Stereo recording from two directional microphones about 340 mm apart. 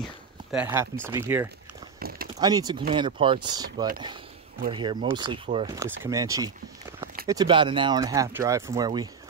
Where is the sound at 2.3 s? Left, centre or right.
Centre.